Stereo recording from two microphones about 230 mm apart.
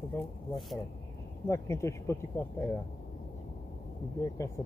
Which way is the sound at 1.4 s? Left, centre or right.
Centre.